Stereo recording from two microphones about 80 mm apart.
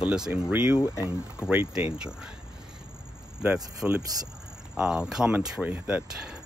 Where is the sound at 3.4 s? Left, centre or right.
Centre.